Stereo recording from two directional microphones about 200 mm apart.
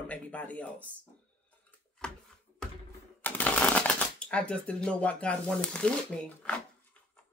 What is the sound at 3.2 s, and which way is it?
Speech, 5° left (ahead or behind).